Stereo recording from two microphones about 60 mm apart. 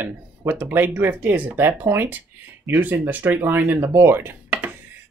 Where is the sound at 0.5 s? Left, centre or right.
Right.